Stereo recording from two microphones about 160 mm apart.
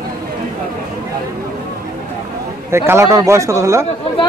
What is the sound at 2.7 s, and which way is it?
Speech, 15° right (ahead or behind).